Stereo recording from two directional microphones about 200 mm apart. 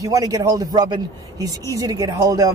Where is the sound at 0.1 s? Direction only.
20° right (ahead or behind).